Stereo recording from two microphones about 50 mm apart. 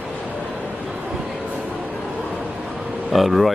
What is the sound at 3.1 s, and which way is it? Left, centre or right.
Speech, centre.